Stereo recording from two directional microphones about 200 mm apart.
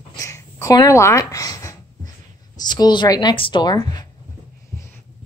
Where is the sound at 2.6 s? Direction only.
20° left (ahead or behind).